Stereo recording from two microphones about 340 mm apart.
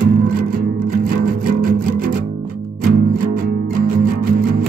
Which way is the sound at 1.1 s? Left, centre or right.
Right.